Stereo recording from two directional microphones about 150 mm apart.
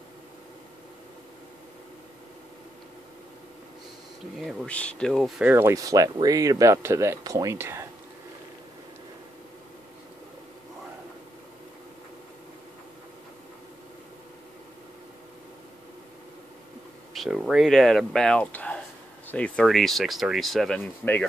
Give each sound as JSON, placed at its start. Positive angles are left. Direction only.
{"t": 4.4, "sound": "speech", "side_deg": 0}
{"t": 5.4, "sound": "speech", "side_deg": -15}
{"t": 17.1, "sound": "speech", "side_deg": 0}